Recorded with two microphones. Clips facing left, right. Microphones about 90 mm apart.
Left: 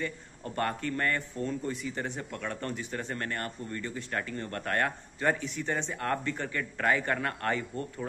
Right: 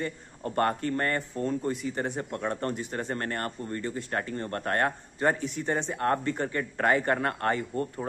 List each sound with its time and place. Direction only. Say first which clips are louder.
0.0 s speech: right 3 dB; 40° right (ahead or behind)